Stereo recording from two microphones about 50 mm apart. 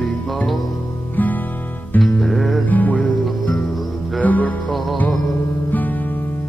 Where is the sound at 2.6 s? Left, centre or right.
Left.